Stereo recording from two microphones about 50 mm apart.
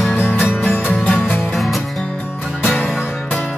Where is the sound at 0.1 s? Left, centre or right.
Left.